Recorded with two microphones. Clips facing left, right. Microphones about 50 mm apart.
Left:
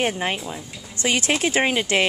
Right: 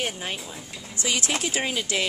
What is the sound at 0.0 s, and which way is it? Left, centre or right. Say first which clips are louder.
Speech: left 7 dB; left.